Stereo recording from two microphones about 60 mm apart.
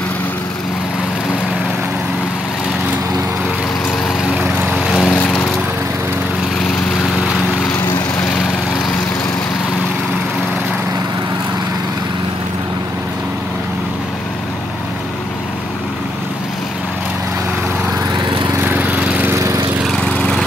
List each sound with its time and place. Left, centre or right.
4.7 s vehicle: centre
5.0 s lawn mower: left
18.6 s lawn mower: right
20.1 s lawn mower: left